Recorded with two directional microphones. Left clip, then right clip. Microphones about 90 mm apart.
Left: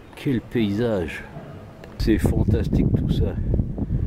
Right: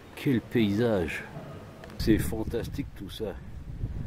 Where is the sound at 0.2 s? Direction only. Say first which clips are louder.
Left 3 dB; 15° right (ahead or behind).